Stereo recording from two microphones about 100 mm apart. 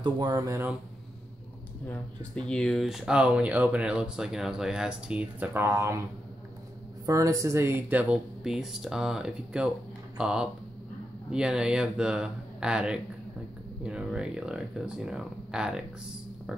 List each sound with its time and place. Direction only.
0.0 s speech: 40° right (ahead or behind)
1.9 s speech: 10° left (ahead or behind); by 5.5 s 10° right (ahead or behind)
5.5 s speech: 25° right (ahead or behind)
7.1 s speech: 35° right (ahead or behind); by 8.2 s 15° right (ahead or behind)
8.5 s speech: 5° right (ahead or behind)